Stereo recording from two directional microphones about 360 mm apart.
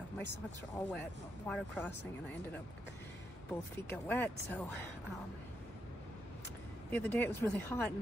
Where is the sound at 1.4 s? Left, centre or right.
Centre.